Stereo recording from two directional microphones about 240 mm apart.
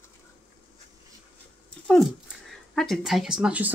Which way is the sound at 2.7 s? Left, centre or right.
Centre.